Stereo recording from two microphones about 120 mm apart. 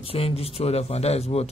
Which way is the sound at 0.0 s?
50° left (ahead or behind).